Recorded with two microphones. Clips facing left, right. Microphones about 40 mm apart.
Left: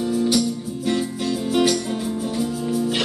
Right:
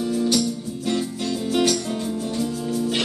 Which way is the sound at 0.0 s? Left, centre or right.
Centre.